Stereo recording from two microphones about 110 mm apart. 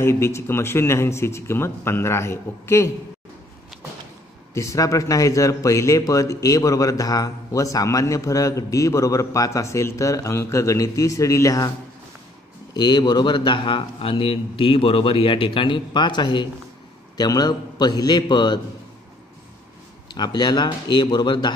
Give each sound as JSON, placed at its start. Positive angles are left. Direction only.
{"t": 0.0, "sound": "a man's voice", "side_deg": 25}
{"t": 4.6, "sound": "a man's voice", "side_deg": 30}
{"t": 12.7, "sound": "a man's voice", "side_deg": 40}
{"t": 20.2, "sound": "a man's voice", "side_deg": 40}